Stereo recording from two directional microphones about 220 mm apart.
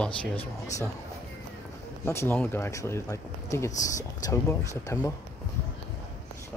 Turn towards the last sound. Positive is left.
turn(degrees=15)  # may be behind; listen again after turning